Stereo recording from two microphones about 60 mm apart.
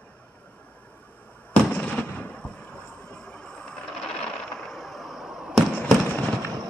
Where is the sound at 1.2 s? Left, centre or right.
Left.